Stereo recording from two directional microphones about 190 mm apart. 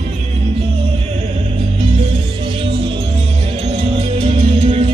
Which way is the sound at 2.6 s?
30° right (ahead or behind).